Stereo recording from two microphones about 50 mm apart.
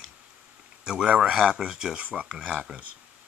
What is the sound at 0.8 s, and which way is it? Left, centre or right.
Speech, right.